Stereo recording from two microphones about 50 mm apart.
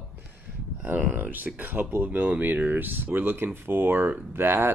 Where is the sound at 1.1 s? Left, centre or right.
Right.